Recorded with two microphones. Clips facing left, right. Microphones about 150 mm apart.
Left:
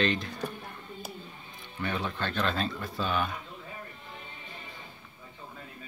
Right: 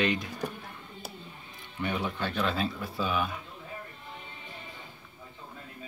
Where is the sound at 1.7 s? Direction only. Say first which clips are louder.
Right 1 dB; 10° right (ahead or behind).